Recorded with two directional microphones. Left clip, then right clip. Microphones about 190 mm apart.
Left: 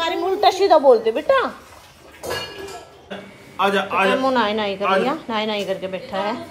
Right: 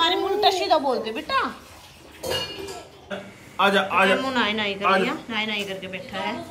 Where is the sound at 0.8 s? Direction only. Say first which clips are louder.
Left 11 dB; 55° left (ahead or behind).